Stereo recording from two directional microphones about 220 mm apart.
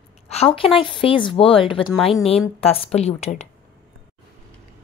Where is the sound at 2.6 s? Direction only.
25° left (ahead or behind).